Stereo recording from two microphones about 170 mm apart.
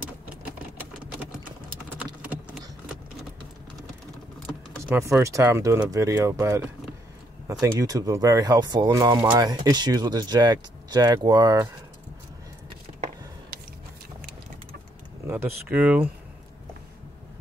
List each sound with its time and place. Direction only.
2.0 s typing: 5° right (ahead or behind)
4.8 s speech: 15° right (ahead or behind)
15.2 s speech: 15° right (ahead or behind)